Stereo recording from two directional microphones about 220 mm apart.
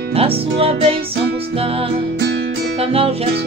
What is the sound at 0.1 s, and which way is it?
Music, 25° right (ahead or behind).